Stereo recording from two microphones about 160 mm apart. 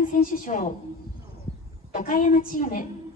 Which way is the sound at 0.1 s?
60° left (ahead or behind).